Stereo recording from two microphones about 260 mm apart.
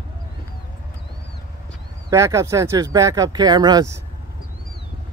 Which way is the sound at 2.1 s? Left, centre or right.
Centre.